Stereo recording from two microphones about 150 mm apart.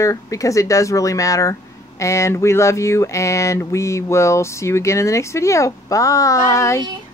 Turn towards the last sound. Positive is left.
turn(degrees=20)  # may be behind; listen again after turning